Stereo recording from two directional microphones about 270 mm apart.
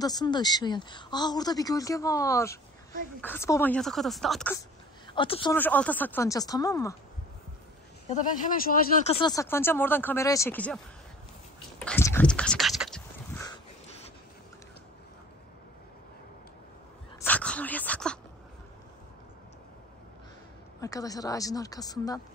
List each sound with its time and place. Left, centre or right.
0.0 s speech: centre
5.1 s speech: centre
5.6 s speech: centre
8.1 s speech: left
9.1 s speech: centre
11.8 s speech: centre
17.2 s dog: centre
20.8 s speech: centre